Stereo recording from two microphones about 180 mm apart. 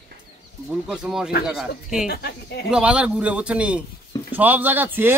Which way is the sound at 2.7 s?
5° right (ahead or behind).